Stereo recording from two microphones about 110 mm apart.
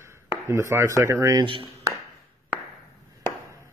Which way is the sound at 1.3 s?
50° right (ahead or behind).